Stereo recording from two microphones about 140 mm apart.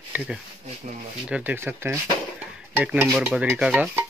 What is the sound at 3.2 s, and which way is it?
Stir, 10° right (ahead or behind).